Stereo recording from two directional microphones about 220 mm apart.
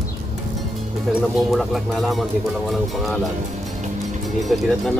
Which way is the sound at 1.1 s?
Centre (ahead or behind).